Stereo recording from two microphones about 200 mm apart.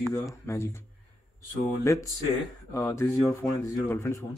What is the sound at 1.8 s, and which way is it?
Speech, 15° left (ahead or behind).